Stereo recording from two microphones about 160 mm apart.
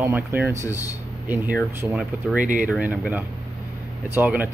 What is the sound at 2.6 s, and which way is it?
Speech, 10° right (ahead or behind).